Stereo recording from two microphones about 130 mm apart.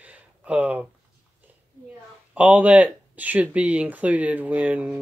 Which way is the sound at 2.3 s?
10° right (ahead or behind).